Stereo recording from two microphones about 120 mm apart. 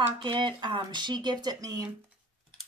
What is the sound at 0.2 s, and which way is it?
Speech, 40° right (ahead or behind).